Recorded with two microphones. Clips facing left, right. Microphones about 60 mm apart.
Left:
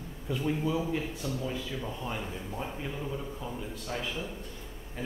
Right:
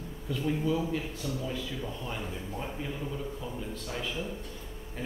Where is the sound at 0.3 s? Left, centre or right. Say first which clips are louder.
Even; centre.